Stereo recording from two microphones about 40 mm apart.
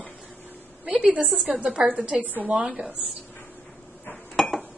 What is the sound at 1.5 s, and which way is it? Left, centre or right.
Speech, right.